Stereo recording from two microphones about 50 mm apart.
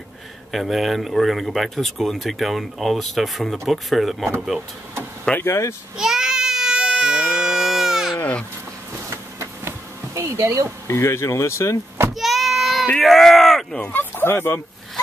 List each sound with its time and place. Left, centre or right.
0.5 s speech: centre
5.3 s speech: centre
5.9 s baby cry: centre
10.1 s bee: right
10.9 s speech: left
12.1 s child singing: centre
13.0 s a sound: centre
13.9 s speech: left